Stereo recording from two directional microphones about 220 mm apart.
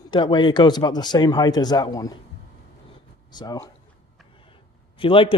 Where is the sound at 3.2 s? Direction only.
20° left (ahead or behind).